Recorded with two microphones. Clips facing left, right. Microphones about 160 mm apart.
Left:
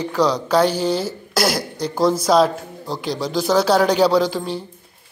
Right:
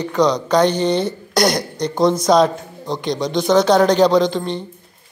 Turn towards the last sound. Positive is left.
turn(degrees=5)  # may be behind; listen again after turning